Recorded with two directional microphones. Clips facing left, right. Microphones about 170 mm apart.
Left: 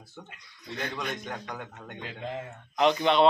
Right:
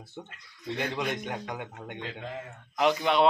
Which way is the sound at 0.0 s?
25° right (ahead or behind).